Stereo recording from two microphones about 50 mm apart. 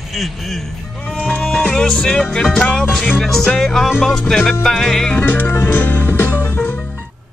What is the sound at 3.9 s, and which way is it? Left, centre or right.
Music, centre.